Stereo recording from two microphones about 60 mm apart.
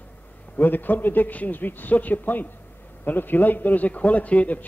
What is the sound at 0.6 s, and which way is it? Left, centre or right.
A man's voice, left.